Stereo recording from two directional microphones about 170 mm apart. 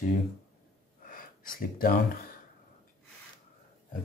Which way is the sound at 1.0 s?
55° left (ahead or behind).